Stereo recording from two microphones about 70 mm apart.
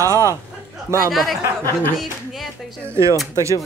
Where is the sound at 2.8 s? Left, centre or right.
Right.